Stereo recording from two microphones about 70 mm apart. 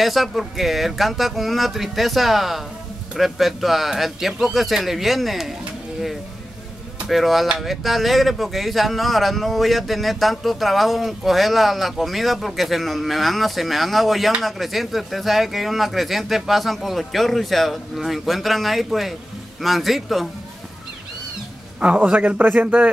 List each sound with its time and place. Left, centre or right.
0.0 s speech: centre
7.1 s speech: centre
21.7 s a man's voice: centre